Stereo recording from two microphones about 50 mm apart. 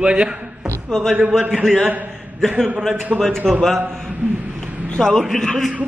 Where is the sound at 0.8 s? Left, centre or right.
Centre.